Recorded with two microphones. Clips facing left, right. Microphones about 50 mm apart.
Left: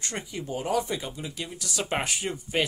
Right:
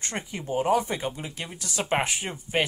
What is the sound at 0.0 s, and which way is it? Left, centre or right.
Speech, right.